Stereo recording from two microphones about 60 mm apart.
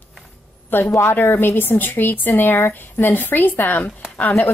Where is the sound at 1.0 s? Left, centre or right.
Left.